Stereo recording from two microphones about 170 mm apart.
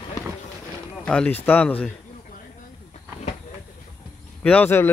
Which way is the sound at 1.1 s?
10° left (ahead or behind).